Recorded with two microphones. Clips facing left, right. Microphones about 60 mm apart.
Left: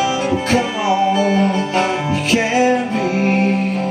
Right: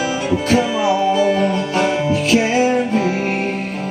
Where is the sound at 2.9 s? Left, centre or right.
Left.